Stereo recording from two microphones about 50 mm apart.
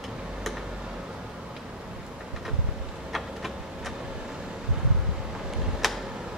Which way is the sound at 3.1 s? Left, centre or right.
Centre.